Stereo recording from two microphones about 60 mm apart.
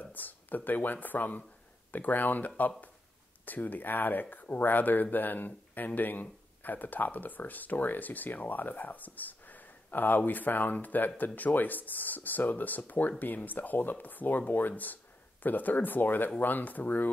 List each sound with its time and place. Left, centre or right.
0.0 s speech: left